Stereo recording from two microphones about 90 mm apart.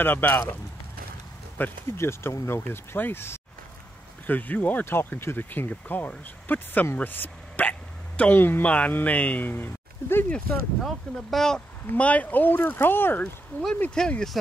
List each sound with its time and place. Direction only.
0.0 s speech: 20° left (ahead or behind)
1.6 s speech: 30° left (ahead or behind)
10.3 s speech: 5° left (ahead or behind)
11.9 s speech: 15° left (ahead or behind)
13.7 s speech: 10° left (ahead or behind)